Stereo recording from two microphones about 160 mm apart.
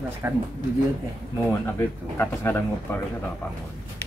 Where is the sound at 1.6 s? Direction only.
15° left (ahead or behind).